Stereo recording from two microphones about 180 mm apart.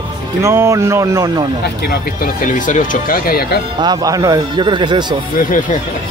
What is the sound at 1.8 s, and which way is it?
Speech, 50° left (ahead or behind).